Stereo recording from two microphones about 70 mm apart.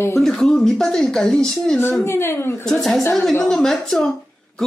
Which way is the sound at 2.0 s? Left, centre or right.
Left.